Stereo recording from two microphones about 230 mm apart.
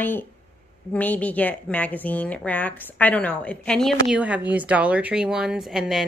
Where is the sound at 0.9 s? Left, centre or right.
Centre.